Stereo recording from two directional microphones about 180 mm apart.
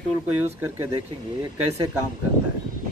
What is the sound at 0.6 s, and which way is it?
Speech, 10° right (ahead or behind).